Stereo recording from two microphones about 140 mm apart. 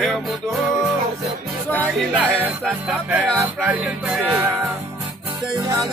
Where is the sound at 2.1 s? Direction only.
10° right (ahead or behind).